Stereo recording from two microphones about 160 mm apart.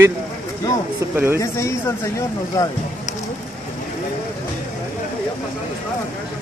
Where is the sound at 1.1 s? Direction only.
15° right (ahead or behind).